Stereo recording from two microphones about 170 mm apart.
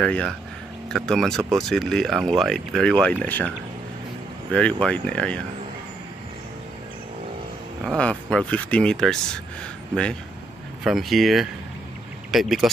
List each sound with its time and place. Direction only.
0.0 s speech: 5° left (ahead or behind)
7.8 s speech: 5° left (ahead or behind)
10.8 s speech: centre (ahead or behind)